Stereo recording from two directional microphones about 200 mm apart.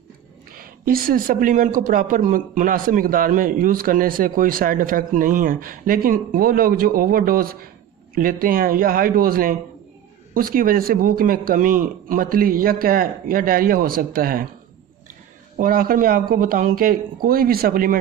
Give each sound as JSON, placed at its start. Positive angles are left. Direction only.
{"t": 0.5, "sound": "speech", "side_deg": -45}
{"t": 15.5, "sound": "speech", "side_deg": -45}